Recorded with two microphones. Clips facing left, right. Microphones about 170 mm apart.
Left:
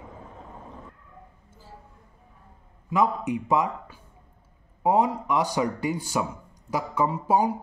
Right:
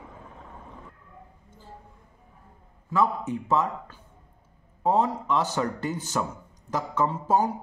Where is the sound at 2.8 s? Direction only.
15° left (ahead or behind).